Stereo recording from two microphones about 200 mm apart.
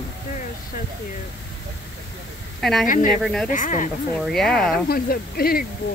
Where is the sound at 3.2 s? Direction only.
Centre (ahead or behind).